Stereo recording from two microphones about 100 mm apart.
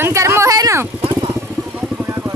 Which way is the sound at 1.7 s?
15° right (ahead or behind).